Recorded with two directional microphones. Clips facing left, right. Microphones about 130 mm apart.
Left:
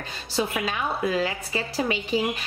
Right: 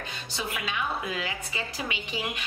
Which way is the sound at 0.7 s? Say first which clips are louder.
Left 5 dB; 35° left (ahead or behind).